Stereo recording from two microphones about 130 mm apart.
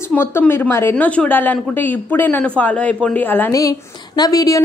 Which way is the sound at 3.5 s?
25° left (ahead or behind).